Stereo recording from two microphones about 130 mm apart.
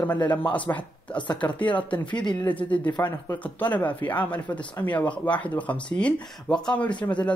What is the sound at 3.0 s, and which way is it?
Speech, 20° left (ahead or behind).